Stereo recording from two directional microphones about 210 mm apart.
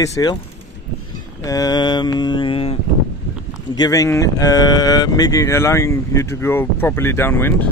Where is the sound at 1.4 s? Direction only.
15° left (ahead or behind).